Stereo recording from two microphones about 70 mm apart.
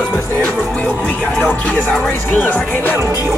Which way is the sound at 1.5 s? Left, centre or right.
Left.